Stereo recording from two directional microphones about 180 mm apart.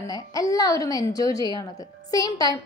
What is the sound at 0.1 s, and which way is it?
A woman's voice, 20° left (ahead or behind).